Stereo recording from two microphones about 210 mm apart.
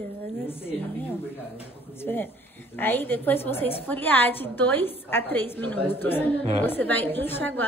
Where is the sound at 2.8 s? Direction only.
10° left (ahead or behind).